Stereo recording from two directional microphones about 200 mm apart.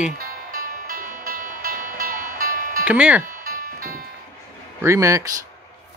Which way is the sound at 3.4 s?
45° right (ahead or behind).